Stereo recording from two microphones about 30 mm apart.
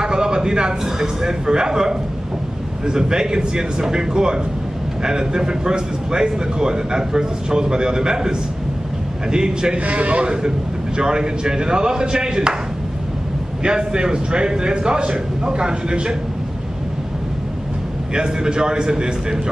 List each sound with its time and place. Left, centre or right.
0.0 s a sound: right
1.0 s speech: right
9.8 s a man's voice: right
10.2 s speech: right
13.6 s speech: right
18.1 s speech: right